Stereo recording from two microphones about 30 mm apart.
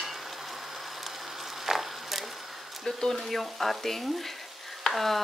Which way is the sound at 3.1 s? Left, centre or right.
Centre.